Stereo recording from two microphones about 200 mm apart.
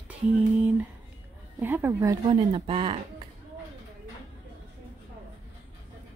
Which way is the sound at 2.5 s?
25° right (ahead or behind).